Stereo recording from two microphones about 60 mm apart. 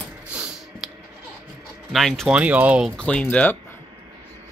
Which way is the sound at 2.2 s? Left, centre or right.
Right.